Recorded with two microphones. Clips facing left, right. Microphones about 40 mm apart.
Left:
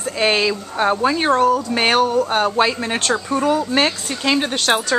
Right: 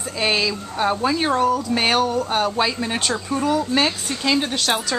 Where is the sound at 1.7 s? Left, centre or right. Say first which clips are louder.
Left 3 dB; centre.